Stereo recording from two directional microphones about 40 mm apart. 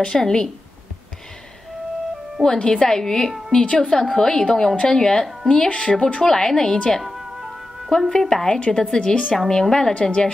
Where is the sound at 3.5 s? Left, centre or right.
Left.